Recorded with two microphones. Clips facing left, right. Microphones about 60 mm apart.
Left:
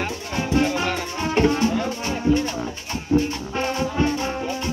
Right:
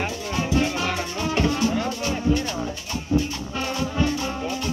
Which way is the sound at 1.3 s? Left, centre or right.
Left.